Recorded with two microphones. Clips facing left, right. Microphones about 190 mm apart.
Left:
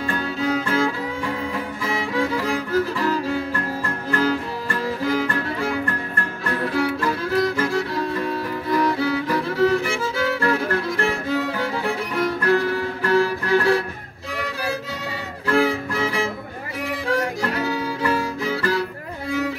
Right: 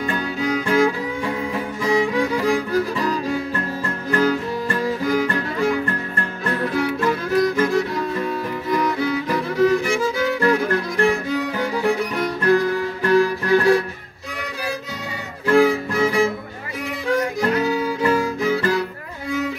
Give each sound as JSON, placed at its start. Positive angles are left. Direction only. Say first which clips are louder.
{"t": 0.0, "sound": "music", "louder": "right 1 dB", "side_deg": -15}
{"t": 15.4, "sound": "violin", "louder": "right 4 dB", "side_deg": -15}
{"t": 17.1, "sound": "music", "louder": "right 4 dB", "side_deg": -20}